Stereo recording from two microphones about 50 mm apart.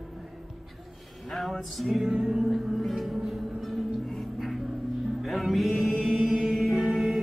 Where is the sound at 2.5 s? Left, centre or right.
Centre.